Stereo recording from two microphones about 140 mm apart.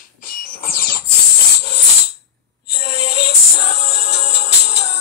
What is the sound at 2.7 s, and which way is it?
Music, 45° left (ahead or behind).